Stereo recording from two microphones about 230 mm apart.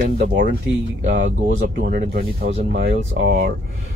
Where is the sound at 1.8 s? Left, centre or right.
Right.